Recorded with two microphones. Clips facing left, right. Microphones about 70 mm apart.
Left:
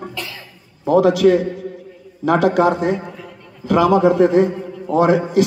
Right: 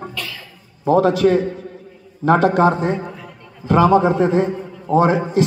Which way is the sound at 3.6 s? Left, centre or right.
Right.